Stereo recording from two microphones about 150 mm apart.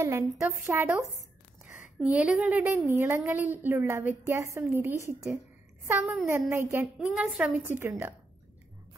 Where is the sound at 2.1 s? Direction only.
5° right (ahead or behind).